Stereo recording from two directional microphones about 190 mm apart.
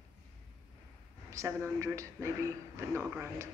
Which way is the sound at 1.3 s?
15° right (ahead or behind).